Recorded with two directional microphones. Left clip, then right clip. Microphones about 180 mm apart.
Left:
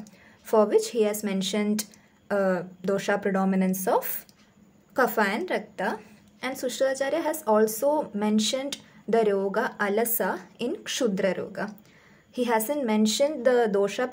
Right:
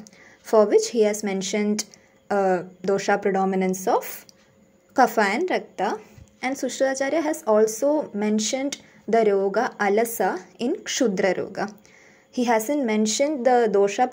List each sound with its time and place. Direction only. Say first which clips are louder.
0.5 s a woman's voice: right 4 dB; 20° right (ahead or behind)